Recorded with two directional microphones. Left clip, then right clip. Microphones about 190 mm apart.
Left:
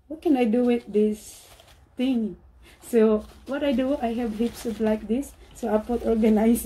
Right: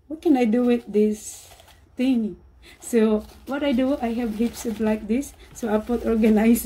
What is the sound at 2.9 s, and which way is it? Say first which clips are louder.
A woman's voice: left 1 dB; 20° right (ahead or behind).